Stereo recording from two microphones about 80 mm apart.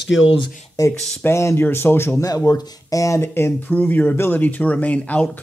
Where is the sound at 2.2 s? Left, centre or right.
Left.